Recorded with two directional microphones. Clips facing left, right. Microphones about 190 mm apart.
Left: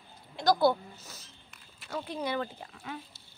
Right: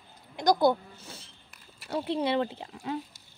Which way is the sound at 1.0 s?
30° right (ahead or behind).